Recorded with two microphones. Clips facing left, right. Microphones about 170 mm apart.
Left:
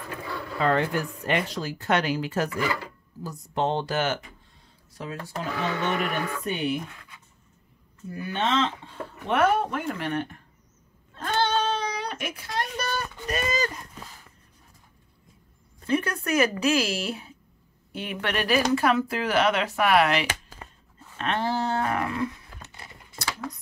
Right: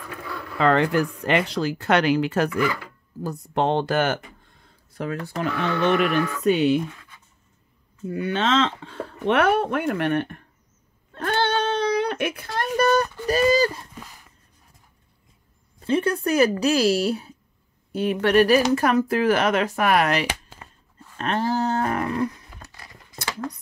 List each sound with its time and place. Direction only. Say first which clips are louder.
0.6 s speech: right 5 dB; 90° right; by 2.5 s 70° right (ahead or behind)
3.2 s speech: right 4 dB; 60° right (ahead or behind); by 6.8 s 90° right
8.1 s speech: right 4 dB; 90° right; by 10.4 s 65° right (ahead or behind)
11.1 s child singing: right 2 dB; 60° right (ahead or behind); by 13.1 s 45° right (ahead or behind)
13.3 s speech: right 9 dB; 35° right (ahead or behind)
15.9 s speech: right 4 dB; 30° right (ahead or behind); by 20.2 s 45° right (ahead or behind)
21.2 s a sound: right 3 dB; 40° right (ahead or behind)
22.6 s a sound: even; 25° left (ahead or behind)